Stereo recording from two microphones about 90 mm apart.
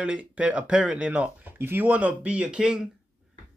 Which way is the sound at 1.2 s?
25° right (ahead or behind).